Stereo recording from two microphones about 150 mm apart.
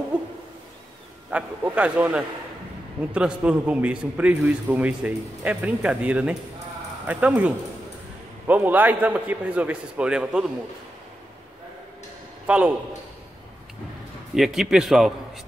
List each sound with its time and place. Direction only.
1.3 s a man's voice: 10° right (ahead or behind)
12.4 s a man's voice: 10° right (ahead or behind)
14.3 s a man's voice: centre (ahead or behind)